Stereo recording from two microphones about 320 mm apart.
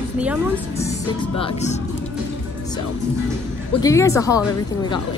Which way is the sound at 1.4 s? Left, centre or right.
Left.